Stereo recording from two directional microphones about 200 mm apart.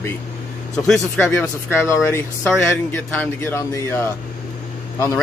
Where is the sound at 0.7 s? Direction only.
Centre (ahead or behind).